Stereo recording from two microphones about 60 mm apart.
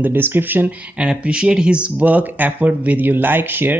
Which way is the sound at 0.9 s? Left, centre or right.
Centre.